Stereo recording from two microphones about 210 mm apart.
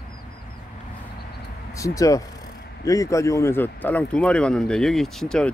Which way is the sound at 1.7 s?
15° left (ahead or behind).